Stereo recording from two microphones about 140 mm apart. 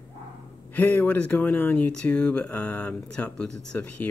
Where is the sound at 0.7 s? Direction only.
10° left (ahead or behind).